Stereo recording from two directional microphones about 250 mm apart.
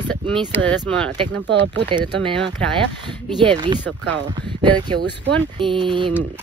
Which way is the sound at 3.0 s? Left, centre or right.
Centre.